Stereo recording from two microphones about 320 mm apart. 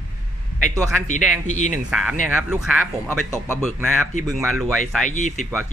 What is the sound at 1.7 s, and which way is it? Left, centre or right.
Speech, centre.